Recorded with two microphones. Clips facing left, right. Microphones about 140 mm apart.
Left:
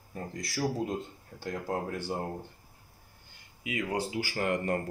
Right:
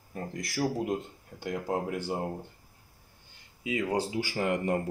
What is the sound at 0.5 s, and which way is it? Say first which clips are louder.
Speech: right 2 dB; 20° right (ahead or behind).